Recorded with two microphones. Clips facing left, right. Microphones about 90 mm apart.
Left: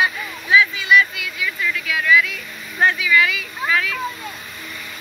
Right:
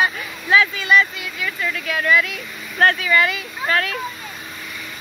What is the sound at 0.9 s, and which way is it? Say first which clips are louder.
Vehicle: left 1 dB; 35° right (ahead or behind).